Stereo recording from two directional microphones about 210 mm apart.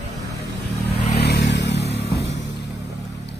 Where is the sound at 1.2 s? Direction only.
50° left (ahead or behind).